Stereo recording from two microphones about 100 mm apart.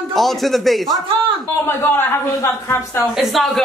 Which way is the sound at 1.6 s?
25° left (ahead or behind).